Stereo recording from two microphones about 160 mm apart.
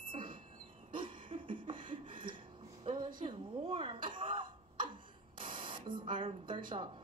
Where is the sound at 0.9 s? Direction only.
30° right (ahead or behind).